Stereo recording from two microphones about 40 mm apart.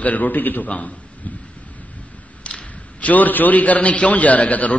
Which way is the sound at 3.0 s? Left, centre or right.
Left.